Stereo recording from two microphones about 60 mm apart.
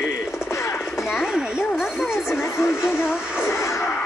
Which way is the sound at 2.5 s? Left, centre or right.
Left.